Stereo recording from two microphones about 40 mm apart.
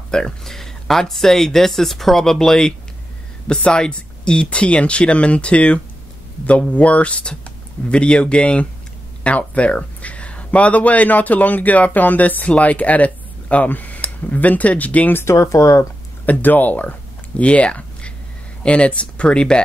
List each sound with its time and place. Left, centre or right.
0.1 s speech: centre; by 15.1 s left
16.3 s speech: left
17.4 s speech: left